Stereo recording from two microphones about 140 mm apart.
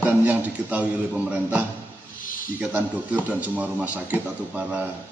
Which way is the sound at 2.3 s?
75° left (ahead or behind).